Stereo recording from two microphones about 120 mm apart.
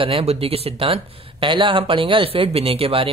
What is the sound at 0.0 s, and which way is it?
Speech, 55° right (ahead or behind).